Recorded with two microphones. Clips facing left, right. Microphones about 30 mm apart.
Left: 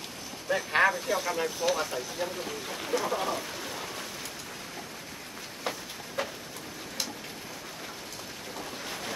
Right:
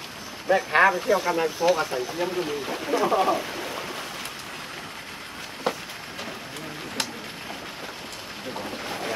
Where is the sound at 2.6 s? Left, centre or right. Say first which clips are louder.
Right 5 dB; right.